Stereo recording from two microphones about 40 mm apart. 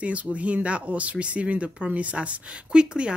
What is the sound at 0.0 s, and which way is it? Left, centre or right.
Speech, right.